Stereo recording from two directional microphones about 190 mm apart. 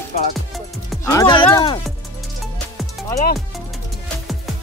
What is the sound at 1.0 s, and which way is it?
Speech, 20° left (ahead or behind).